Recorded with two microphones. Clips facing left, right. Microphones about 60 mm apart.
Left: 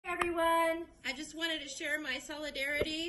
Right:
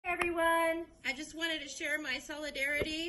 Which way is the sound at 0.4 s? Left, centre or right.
Centre.